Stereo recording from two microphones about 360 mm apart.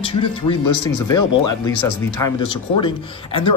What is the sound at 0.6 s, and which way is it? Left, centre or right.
Speech, left.